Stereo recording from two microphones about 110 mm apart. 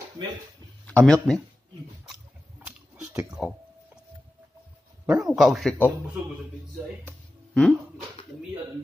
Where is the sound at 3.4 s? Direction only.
10° right (ahead or behind).